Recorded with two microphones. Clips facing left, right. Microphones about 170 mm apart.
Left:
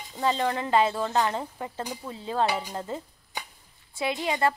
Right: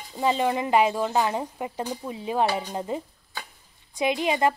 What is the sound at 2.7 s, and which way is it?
Speech, 15° right (ahead or behind).